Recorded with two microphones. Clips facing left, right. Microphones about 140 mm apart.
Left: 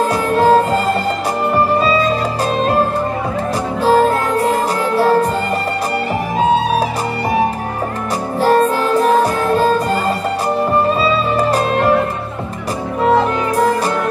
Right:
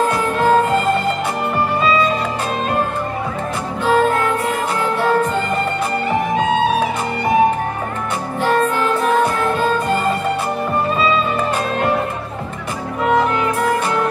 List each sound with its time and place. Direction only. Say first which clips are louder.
0.4 s music: left 3 dB; 35° left (ahead or behind)
3.8 s music: left 2 dB; 35° left (ahead or behind)
8.4 s music: left 4 dB; 35° left (ahead or behind)
13.0 s music: left 2 dB; 30° left (ahead or behind)